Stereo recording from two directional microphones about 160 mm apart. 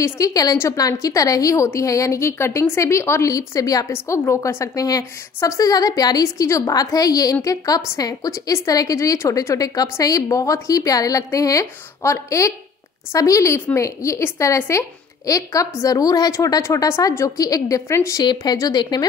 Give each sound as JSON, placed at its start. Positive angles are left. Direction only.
{"t": 0.0, "sound": "a woman's voice", "side_deg": 20}